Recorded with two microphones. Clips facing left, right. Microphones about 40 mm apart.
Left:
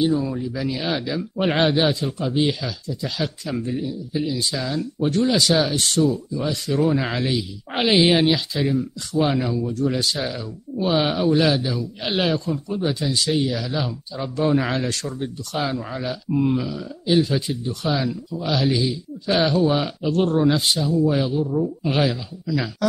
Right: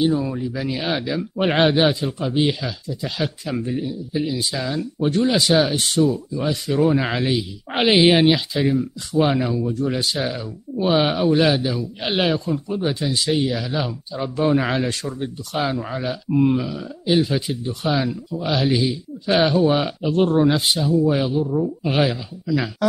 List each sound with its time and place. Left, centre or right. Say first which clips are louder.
0.0 s speech: right 1 dB; centre
18.0 s speech: right 1 dB; centre
20.0 s speech: right 2 dB; right